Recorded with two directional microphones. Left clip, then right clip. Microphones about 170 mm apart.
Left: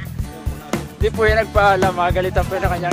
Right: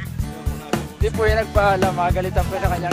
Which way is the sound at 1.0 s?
45° left (ahead or behind).